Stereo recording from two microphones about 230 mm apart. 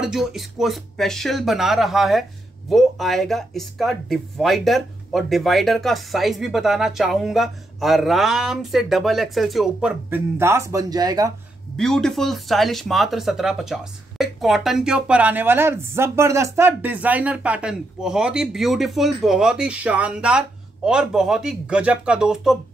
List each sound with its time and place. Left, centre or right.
0.0 s speech: centre
11.7 s speech: centre